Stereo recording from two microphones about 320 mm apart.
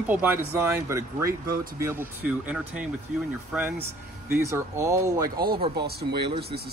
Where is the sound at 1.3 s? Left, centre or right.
Right.